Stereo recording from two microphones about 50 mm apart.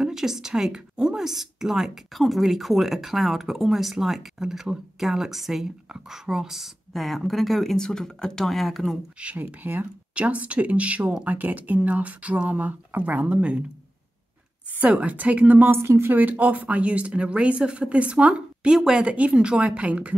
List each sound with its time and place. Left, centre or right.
0.0 s a woman's voice: centre
8.5 s speech: centre
9.2 s speech: right
14.8 s speech: right
15.7 s speech: right